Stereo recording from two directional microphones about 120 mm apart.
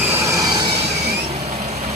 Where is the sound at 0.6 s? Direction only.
60° right (ahead or behind).